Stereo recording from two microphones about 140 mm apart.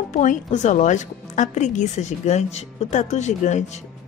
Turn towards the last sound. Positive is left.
turn(degrees=55)  # may be behind; listen again after turning